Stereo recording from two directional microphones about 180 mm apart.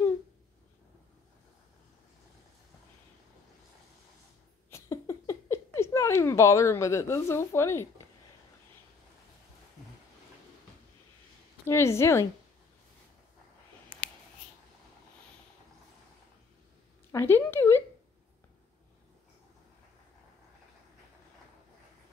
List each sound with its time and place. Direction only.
4.6 s a sound: 15° left (ahead or behind)
11.6 s speech: 15° left (ahead or behind)
17.1 s speech: 15° left (ahead or behind)